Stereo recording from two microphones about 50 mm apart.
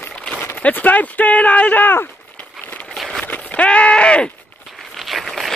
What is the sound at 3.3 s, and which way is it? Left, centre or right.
Speech, left.